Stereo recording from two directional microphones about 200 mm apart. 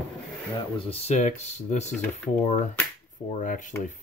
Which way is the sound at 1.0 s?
35° left (ahead or behind).